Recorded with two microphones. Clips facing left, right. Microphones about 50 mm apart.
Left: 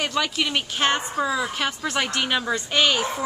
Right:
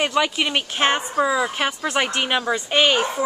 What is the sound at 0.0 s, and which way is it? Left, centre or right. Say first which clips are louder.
Speech: right 4 dB; right.